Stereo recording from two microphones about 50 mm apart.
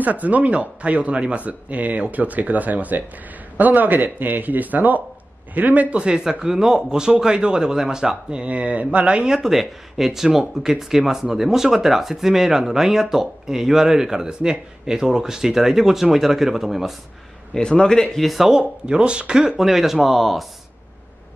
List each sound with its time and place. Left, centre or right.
0.0 s speech: right
9.4 s speech: centre
17.6 s a man's voice: centre
18.2 s speech: centre
18.5 s speech: centre